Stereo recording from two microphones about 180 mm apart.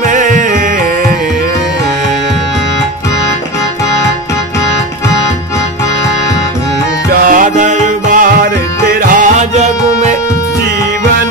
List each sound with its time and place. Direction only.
0.0 s music: 45° right (ahead or behind)
7.2 s music: 50° right (ahead or behind)